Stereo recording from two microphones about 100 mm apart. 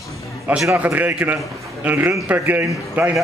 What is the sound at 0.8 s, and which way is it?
Speech, 15° right (ahead or behind).